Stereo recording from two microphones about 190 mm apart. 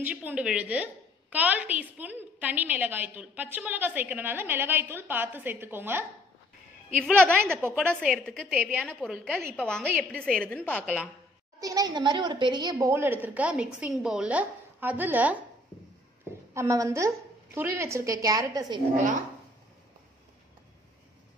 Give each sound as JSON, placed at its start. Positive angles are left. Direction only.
{"t": 0.0, "sound": "a woman's voice", "side_deg": -10}
{"t": 7.2, "sound": "a woman's voice", "side_deg": 5}
{"t": 7.5, "sound": "a woman's voice", "side_deg": -10}
{"t": 11.6, "sound": "a woman's voice", "side_deg": -20}
{"t": 16.5, "sound": "a woman's voice", "side_deg": -15}